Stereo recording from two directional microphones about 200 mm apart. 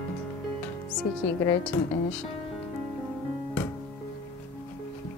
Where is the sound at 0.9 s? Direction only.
5° left (ahead or behind).